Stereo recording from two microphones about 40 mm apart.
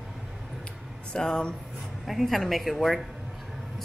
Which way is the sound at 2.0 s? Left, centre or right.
Centre.